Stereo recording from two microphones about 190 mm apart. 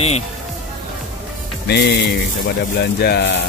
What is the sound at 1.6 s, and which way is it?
Speech, 60° left (ahead or behind).